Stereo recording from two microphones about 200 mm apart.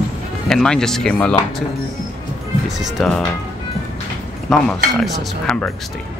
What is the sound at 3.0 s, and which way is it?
Speech, centre (ahead or behind).